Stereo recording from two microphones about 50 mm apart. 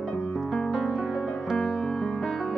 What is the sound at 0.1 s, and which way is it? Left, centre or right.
Music, left.